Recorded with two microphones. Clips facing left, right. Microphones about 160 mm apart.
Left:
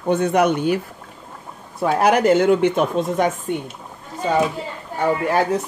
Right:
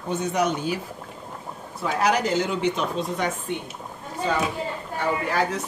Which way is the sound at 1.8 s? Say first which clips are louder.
Left 7 dB; 55° left (ahead or behind).